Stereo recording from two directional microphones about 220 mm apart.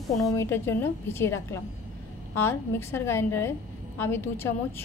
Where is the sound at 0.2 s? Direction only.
15° left (ahead or behind).